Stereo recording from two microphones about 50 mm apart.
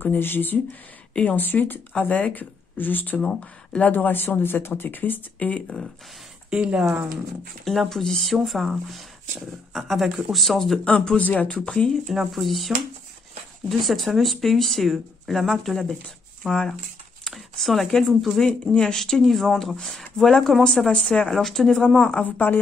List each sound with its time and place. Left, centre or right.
0.0 s speech: left
2.0 s speech: left
3.3 s speech: left
3.9 s speech: left
6.5 s speech: right
7.9 s speech: centre
10.8 s speech: left
11.5 s speech: centre
11.9 s speech: centre
17.3 s speech: centre
21.8 s speech: centre
22.2 s speech: left